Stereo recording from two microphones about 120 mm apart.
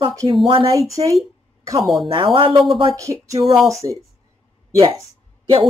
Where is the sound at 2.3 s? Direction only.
45° right (ahead or behind).